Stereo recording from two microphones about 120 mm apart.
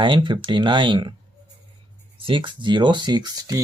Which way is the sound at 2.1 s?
50° right (ahead or behind).